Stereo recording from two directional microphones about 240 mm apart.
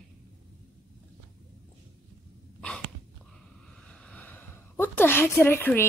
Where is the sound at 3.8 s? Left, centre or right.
Centre.